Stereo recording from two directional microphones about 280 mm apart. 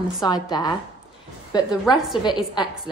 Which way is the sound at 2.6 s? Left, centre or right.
Centre.